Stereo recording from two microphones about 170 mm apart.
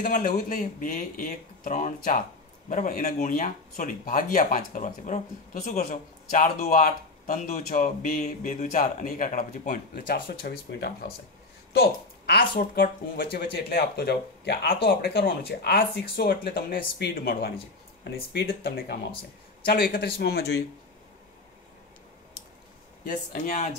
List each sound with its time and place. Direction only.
0.0 s speech: 60° left (ahead or behind)
23.0 s speech: 45° left (ahead or behind)